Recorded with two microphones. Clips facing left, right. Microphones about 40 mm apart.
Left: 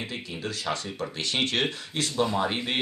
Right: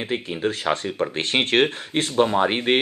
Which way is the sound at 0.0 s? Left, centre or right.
Right.